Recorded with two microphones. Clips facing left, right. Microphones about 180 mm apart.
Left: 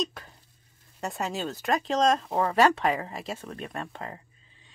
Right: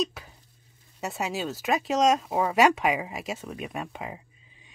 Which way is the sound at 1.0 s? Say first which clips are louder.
Right 1 dB; 5° right (ahead or behind).